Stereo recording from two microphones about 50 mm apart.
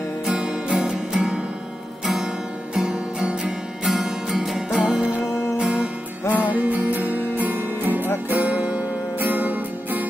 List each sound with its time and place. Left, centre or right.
0.4 s music: centre
2.7 s music: centre
5.3 s music: left
5.6 s music: centre
6.3 s music: right